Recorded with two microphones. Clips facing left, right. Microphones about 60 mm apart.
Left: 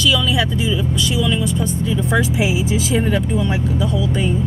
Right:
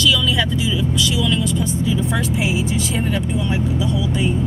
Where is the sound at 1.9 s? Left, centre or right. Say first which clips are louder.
Left 2 dB; centre.